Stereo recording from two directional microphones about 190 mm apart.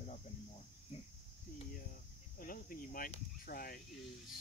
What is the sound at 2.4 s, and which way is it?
Speech, 45° left (ahead or behind).